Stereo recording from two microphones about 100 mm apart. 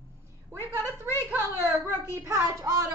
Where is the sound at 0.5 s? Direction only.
30° right (ahead or behind).